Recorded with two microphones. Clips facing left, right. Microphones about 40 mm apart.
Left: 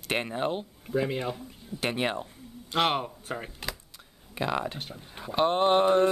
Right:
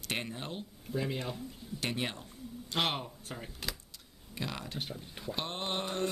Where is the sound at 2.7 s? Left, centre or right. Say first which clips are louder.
Left 7 dB; centre.